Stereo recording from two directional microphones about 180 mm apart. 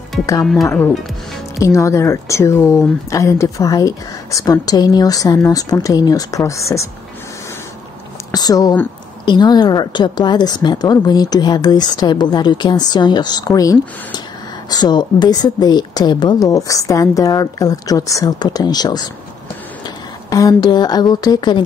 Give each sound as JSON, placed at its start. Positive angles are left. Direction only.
{"t": 1.6, "sound": "a woman's voice", "side_deg": 15}
{"t": 8.3, "sound": "a sound", "side_deg": 20}
{"t": 9.2, "sound": "a woman's voice", "side_deg": 25}
{"t": 20.2, "sound": "a woman's voice", "side_deg": 20}